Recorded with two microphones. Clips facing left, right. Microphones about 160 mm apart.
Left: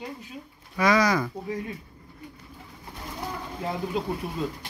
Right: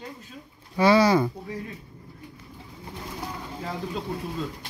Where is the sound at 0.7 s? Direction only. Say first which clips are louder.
Right 4 dB; 30° right (ahead or behind).